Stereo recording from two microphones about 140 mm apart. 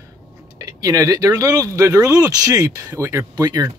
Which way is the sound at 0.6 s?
25° right (ahead or behind).